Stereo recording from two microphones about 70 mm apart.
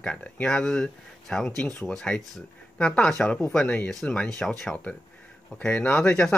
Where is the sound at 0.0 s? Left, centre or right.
Centre.